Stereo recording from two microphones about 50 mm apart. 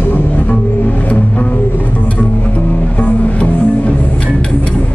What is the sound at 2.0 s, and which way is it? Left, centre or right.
Music, left.